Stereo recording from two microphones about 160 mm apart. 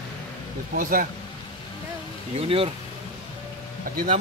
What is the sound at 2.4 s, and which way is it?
Speech, 35° right (ahead or behind).